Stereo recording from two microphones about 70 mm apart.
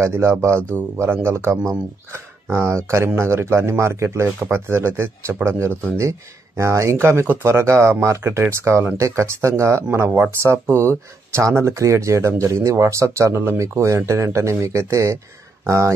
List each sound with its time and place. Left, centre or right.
0.0 s speech: right